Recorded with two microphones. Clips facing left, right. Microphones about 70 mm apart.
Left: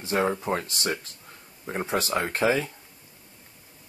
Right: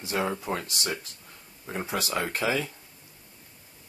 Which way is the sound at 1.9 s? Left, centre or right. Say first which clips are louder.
Left 3 dB; left.